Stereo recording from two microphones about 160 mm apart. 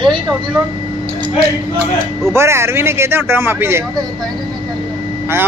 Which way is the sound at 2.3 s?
15° right (ahead or behind).